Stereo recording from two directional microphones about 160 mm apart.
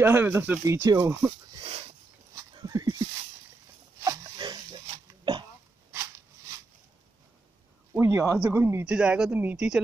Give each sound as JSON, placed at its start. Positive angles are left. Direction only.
{"t": 0.0, "sound": "speech", "side_deg": -15}
{"t": 1.5, "sound": "a sound", "side_deg": -35}
{"t": 4.0, "sound": "pig", "side_deg": -25}
{"t": 5.9, "sound": "a sound", "side_deg": -15}
{"t": 7.9, "sound": "speech", "side_deg": -15}
{"t": 8.8, "sound": "speech", "side_deg": -5}